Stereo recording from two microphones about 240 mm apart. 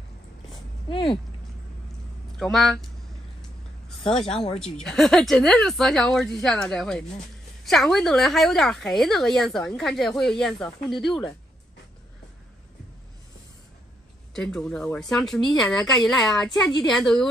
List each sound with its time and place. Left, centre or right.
0.8 s speech: left
2.3 s a woman's voice: centre
4.0 s speech: left
4.7 s a woman's voice: centre
14.3 s a woman's voice: centre